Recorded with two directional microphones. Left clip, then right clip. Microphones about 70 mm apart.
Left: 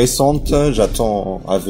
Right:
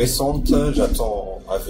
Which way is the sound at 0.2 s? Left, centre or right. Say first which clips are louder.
Left 5 dB; right.